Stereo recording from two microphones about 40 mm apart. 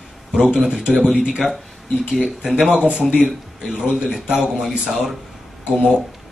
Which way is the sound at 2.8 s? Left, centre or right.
Right.